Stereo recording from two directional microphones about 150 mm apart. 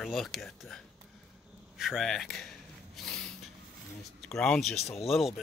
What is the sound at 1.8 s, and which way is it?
Speech, centre (ahead or behind).